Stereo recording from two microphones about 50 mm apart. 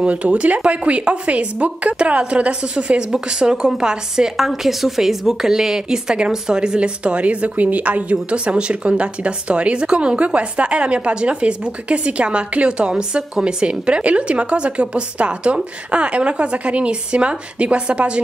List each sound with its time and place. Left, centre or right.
0.0 s a woman's voice: right
4.5 s a woman's voice: centre; by 18.2 s right